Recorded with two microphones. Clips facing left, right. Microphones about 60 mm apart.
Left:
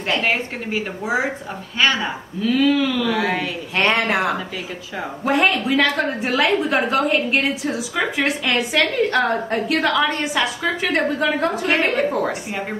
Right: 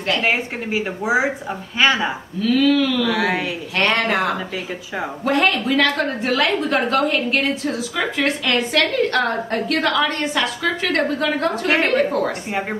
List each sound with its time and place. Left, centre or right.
0.2 s speech: centre
2.4 s a woman's voice: centre
3.1 s speech: centre
3.7 s a woman's voice: centre
11.6 s speech: centre
11.9 s a woman's voice: centre